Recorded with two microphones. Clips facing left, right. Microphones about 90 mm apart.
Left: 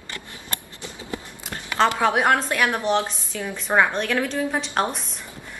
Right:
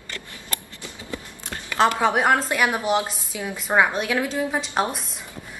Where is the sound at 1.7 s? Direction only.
5° right (ahead or behind).